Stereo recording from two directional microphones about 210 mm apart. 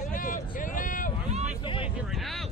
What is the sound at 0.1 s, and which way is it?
Vehicle, 40° left (ahead or behind).